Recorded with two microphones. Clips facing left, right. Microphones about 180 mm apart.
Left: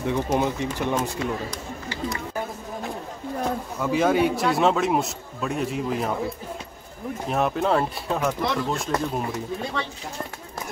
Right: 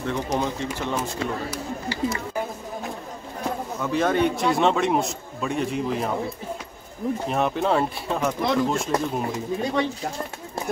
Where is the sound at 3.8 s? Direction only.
5° left (ahead or behind).